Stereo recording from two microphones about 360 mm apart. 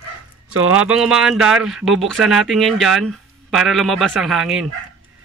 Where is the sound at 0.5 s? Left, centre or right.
Right.